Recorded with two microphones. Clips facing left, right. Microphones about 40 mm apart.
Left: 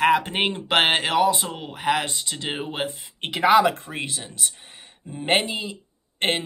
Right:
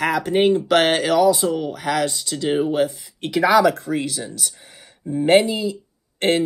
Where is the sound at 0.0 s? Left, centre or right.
Left.